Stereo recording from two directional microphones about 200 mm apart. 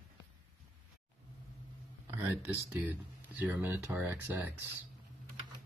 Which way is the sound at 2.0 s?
10° right (ahead or behind).